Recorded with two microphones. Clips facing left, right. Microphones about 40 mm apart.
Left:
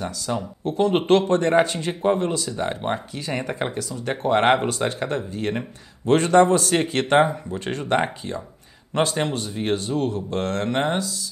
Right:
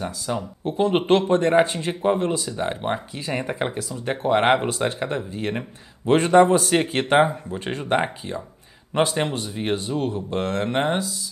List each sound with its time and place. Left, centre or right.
0.3 s speech: centre
0.9 s speech: centre
1.9 s speech: centre
2.1 s speech: centre
2.5 s a man's voice: centre
8.0 s speech: centre
9.2 s a man's voice: right